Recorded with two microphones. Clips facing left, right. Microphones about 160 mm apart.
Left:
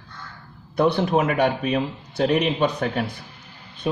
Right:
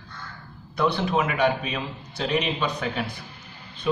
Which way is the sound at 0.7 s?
55° left (ahead or behind).